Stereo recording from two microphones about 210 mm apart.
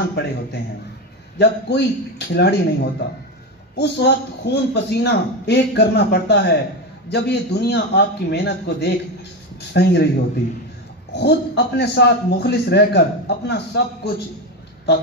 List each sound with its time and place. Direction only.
0.1 s a man's voice: 55° left (ahead or behind)
11.1 s a man's voice: 55° left (ahead or behind)